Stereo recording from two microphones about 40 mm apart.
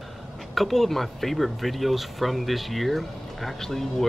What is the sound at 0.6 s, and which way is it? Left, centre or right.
Speech, centre.